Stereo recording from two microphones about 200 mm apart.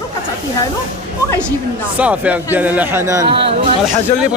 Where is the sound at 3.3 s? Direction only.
25° right (ahead or behind).